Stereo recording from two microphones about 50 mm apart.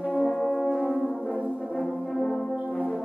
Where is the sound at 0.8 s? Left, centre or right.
Centre.